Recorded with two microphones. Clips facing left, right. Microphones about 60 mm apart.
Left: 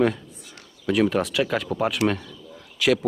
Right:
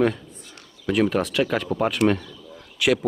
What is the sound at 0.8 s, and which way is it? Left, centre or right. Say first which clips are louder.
Speech: even; centre.